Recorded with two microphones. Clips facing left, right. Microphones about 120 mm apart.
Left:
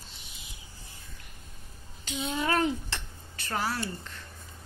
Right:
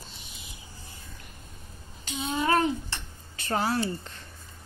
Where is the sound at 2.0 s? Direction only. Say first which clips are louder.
Right 2 dB; 90° left.